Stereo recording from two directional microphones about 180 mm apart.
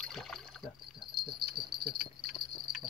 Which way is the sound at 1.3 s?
60° right (ahead or behind).